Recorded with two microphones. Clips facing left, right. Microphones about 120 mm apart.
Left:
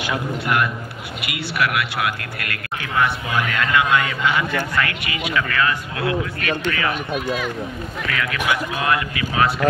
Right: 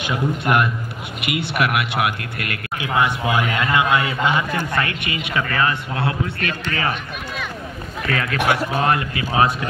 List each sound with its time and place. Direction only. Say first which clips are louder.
0.0 s a man's voice: right 2 dB; 25° right (ahead or behind)
8.1 s speech: right 3 dB; 35° right (ahead or behind)